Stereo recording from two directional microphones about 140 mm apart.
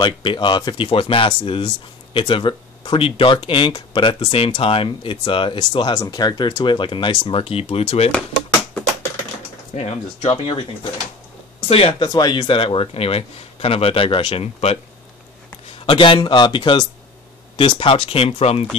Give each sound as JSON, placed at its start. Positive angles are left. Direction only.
{"t": 0.0, "sound": "speech", "side_deg": 35}
{"t": 9.8, "sound": "a man's voice", "side_deg": 45}
{"t": 12.1, "sound": "a man's voice", "side_deg": 30}
{"t": 15.8, "sound": "a man's voice", "side_deg": 35}